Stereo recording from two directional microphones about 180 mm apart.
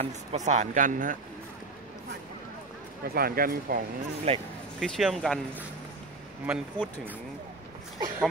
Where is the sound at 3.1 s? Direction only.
55° right (ahead or behind).